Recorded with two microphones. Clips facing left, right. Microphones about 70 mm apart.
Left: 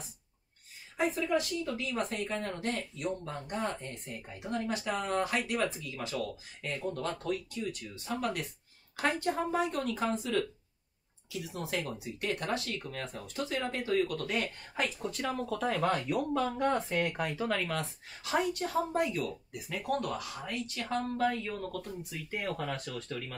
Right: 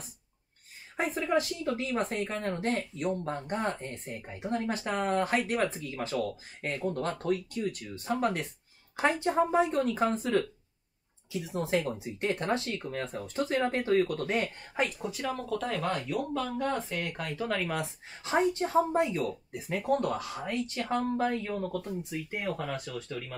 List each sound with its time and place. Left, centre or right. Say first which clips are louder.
1.2 s speech: right 2 dB; right
8.9 s speech: right 4 dB; right
11.3 s speech: right 6 dB; right
15.0 s speech: right 1 dB; centre
17.7 s speech: right 2 dB; right
22.6 s speech: right 1 dB; centre